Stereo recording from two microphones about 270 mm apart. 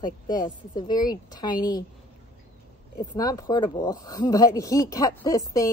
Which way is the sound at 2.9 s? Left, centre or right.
Centre.